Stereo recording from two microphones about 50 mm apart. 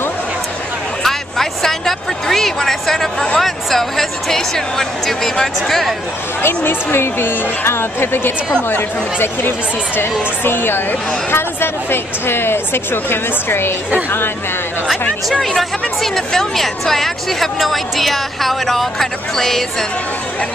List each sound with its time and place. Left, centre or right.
1.0 s a sound: centre
3.3 s speech: centre
6.4 s a woman's voice: left
15.4 s speech: centre